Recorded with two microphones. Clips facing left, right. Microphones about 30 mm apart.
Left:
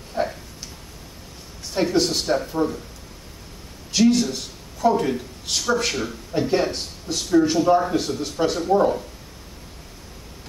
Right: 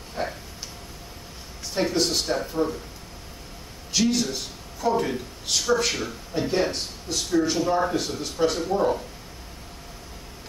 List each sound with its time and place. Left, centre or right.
0.1 s a sound: centre
1.7 s speech: centre
3.9 s a man's voice: centre
8.7 s speech: centre